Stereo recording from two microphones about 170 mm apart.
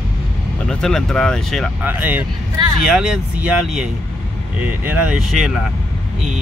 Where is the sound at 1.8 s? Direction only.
10° right (ahead or behind).